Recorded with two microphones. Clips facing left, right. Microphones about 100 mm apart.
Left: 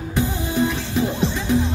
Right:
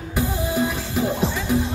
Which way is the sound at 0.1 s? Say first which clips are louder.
Even; 5° right (ahead or behind).